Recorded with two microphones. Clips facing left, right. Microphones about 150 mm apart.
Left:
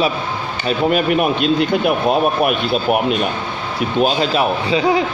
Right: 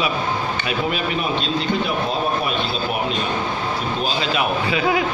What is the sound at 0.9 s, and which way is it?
Speech, 55° left (ahead or behind).